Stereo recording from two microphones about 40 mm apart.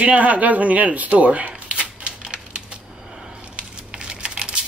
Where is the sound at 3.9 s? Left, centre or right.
Right.